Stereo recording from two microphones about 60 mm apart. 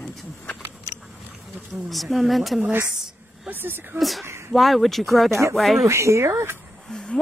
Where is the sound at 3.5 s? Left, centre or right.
Right.